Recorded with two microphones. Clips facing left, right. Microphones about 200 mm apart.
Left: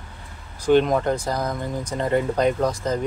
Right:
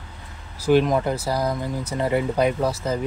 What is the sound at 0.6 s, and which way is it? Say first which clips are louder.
Speech: left 1 dB; 5° right (ahead or behind).